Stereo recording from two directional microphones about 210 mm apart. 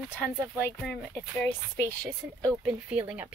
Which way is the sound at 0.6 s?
10° left (ahead or behind).